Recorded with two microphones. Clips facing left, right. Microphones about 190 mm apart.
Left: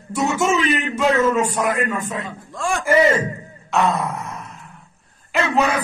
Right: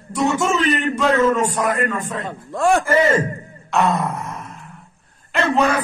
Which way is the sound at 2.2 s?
60° right (ahead or behind).